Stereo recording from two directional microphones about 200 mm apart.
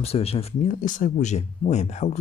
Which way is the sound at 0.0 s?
30° left (ahead or behind).